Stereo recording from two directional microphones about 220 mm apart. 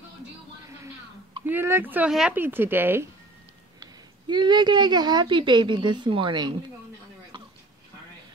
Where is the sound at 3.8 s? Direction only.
20° right (ahead or behind).